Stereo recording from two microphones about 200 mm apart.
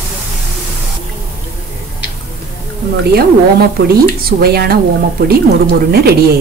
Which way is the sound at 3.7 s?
50° right (ahead or behind).